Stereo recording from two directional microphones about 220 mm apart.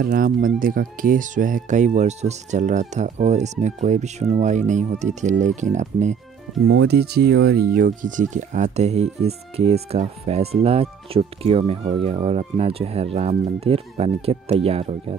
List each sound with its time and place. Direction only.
0.0 s speech: 40° right (ahead or behind)
6.6 s speech: 50° right (ahead or behind); by 15.1 s 25° right (ahead or behind)